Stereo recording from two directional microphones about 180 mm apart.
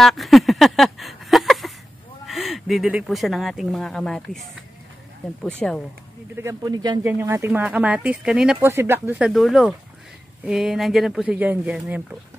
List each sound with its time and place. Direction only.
0.0 s a sound: centre (ahead or behind)
2.2 s speech: centre (ahead or behind)
5.6 s speech: 5° left (ahead or behind)
6.3 s speech: 20° right (ahead or behind)